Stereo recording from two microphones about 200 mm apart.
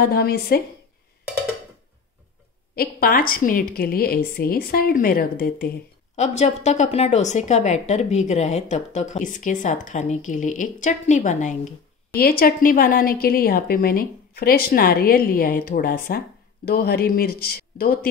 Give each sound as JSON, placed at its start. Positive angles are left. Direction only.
{"t": 0.0, "sound": "a woman's voice", "side_deg": 50}
{"t": 2.7, "sound": "a woman's voice", "side_deg": 50}
{"t": 6.1, "sound": "a woman's voice", "side_deg": 35}